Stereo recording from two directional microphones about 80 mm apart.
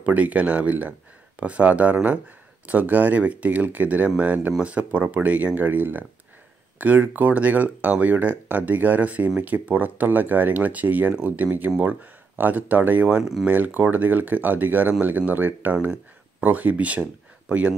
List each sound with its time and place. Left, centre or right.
0.0 s speech: centre
13.2 s speech: centre
13.5 s speech: right